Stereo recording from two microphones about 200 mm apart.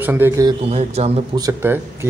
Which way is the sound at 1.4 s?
15° right (ahead or behind).